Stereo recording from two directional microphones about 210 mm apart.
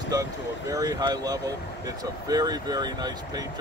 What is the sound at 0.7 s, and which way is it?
Speech, 15° right (ahead or behind).